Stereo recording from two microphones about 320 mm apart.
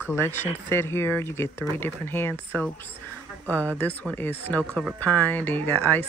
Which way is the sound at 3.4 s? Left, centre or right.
Centre.